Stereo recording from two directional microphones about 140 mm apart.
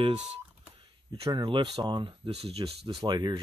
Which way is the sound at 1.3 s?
35° right (ahead or behind).